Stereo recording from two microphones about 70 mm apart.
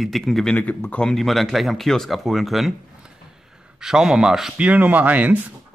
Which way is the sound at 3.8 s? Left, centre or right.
Centre.